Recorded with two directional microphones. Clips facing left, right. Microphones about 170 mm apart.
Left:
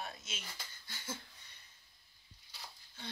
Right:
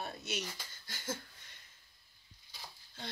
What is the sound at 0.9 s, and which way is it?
Speech, 90° right.